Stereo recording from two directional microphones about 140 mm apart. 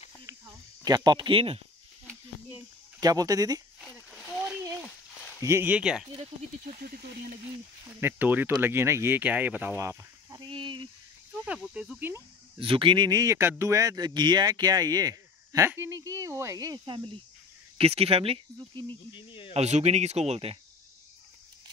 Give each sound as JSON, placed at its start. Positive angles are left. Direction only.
{"t": 0.8, "sound": "speech", "side_deg": -30}
{"t": 3.0, "sound": "speech", "side_deg": -25}
{"t": 5.4, "sound": "speech", "side_deg": -15}
{"t": 7.8, "sound": "speech", "side_deg": -15}
{"t": 9.8, "sound": "a sound", "side_deg": -20}
{"t": 10.4, "sound": "a sound", "side_deg": -35}
{"t": 11.3, "sound": "cricket", "side_deg": -5}
{"t": 12.5, "sound": "speech", "side_deg": -40}
{"t": 15.7, "sound": "cricket", "side_deg": -20}
{"t": 17.7, "sound": "speech", "side_deg": -45}
{"t": 19.1, "sound": "cricket", "side_deg": 40}
{"t": 19.5, "sound": "speech", "side_deg": -50}